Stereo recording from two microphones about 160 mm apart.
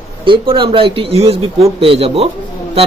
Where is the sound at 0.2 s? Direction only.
30° right (ahead or behind).